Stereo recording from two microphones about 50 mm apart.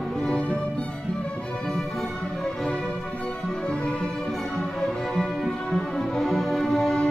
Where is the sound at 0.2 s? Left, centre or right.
Centre.